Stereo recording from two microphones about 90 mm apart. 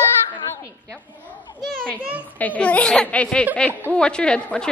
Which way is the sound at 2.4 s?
15° left (ahead or behind).